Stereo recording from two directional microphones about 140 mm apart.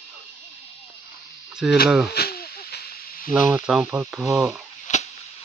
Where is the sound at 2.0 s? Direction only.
90° left.